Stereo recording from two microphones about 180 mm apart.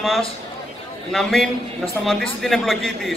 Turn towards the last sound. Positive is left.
turn(degrees=0)  # may be behind; listen again after turning